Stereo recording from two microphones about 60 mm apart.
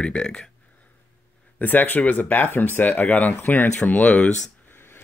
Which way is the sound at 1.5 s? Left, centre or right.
Left.